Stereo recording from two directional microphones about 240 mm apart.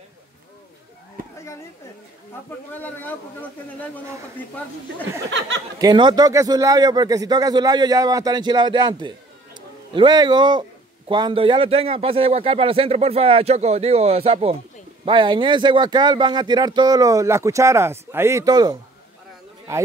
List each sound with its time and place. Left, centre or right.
2.7 s a man's voice: centre
5.8 s a man's voice: centre